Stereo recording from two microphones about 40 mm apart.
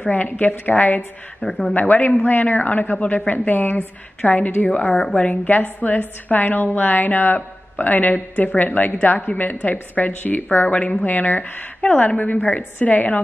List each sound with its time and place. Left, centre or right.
0.1 s a woman's voice: left
1.5 s speech: left
1.8 s a woman's voice: left
4.3 s a woman's voice: left
9.3 s a woman's voice: left
10.7 s a woman's voice: left
11.0 s a woman's voice: left